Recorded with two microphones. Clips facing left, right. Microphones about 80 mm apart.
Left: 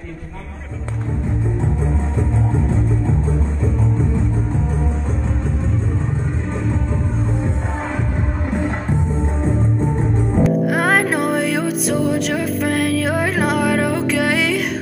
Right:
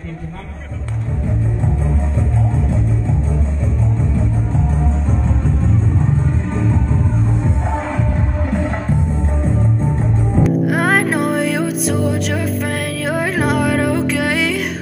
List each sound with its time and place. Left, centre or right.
10.4 s music: centre